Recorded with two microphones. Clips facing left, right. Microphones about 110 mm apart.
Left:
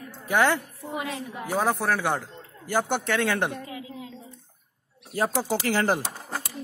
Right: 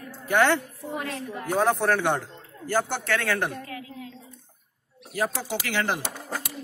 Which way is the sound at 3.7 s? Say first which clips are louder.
Even; 15° left (ahead or behind).